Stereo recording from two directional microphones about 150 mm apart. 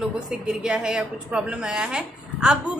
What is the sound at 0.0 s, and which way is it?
A woman's voice, 5° right (ahead or behind).